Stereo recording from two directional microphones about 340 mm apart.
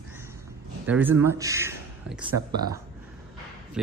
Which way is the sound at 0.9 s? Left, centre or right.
Centre.